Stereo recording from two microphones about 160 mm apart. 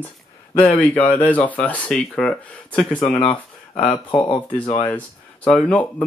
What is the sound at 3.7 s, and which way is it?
Speech, 30° left (ahead or behind).